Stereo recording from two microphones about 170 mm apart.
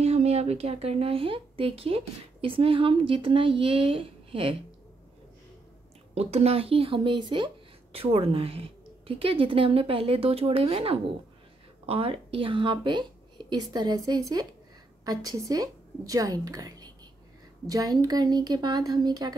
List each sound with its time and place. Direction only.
0.0 s speech: 40° right (ahead or behind)
6.1 s a woman's voice: 35° right (ahead or behind)